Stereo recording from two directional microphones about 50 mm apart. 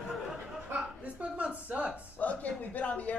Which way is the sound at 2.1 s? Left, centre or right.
Left.